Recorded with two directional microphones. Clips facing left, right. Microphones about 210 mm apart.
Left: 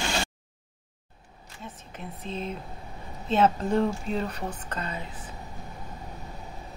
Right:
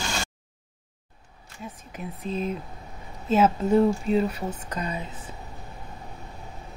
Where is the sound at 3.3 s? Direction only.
5° right (ahead or behind).